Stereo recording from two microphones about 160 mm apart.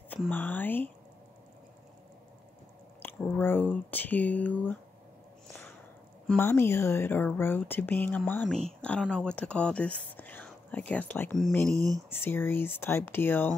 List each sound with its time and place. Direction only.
0.3 s speech: 10° left (ahead or behind)
3.0 s speech: 10° left (ahead or behind)
6.2 s speech: 10° left (ahead or behind)
11.7 s speech: 20° right (ahead or behind)
12.1 s speech: 15° left (ahead or behind)